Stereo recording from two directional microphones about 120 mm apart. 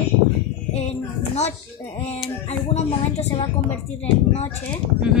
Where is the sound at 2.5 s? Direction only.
65° left (ahead or behind).